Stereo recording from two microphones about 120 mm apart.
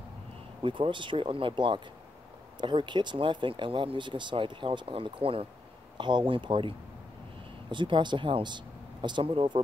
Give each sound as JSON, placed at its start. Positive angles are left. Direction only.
{"t": 0.6, "sound": "speech", "side_deg": -45}
{"t": 7.7, "sound": "speech", "side_deg": -40}